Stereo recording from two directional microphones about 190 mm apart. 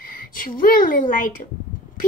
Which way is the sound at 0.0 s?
45° left (ahead or behind).